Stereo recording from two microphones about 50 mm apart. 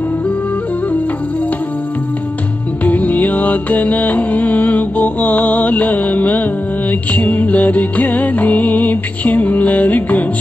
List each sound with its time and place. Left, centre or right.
2.8 s music: left